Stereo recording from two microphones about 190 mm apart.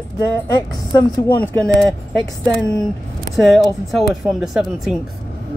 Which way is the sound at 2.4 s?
15° right (ahead or behind).